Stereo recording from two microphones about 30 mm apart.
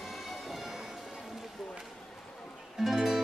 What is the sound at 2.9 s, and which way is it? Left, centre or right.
Music, centre.